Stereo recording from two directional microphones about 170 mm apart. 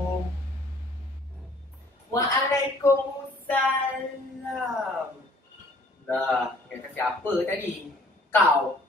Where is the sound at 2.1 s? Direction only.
15° left (ahead or behind).